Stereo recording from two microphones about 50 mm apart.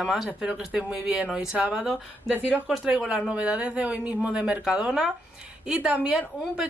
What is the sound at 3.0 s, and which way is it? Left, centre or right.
Speech, centre.